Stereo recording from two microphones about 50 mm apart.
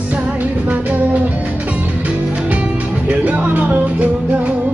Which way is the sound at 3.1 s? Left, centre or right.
Right.